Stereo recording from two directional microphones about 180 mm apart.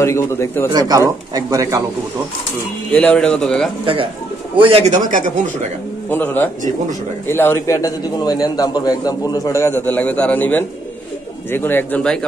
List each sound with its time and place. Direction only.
0.0 s a man's voice: 15° left (ahead or behind)
0.7 s speech: 20° right (ahead or behind)
2.9 s speech: 5° left (ahead or behind)
3.8 s speech: 30° right (ahead or behind)
6.0 s a man's voice: 10° left (ahead or behind)